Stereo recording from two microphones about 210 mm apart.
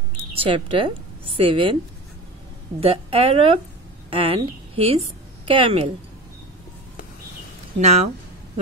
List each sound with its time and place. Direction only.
0.4 s a woman's voice: 25° right (ahead or behind)
2.8 s a woman's voice: 25° right (ahead or behind)
7.8 s speech: 30° right (ahead or behind)